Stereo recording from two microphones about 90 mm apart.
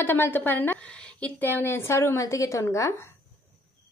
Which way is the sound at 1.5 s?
25° left (ahead or behind).